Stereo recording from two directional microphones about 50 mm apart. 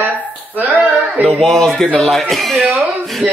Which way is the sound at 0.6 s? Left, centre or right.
Right.